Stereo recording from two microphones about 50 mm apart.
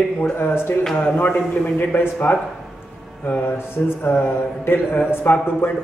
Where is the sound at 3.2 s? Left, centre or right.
Left.